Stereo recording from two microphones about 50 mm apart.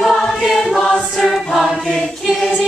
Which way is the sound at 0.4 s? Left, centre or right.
Centre.